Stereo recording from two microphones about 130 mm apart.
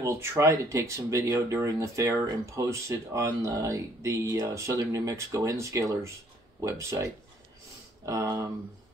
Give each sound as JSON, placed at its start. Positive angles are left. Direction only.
{"t": 0.0, "sound": "speech", "side_deg": -20}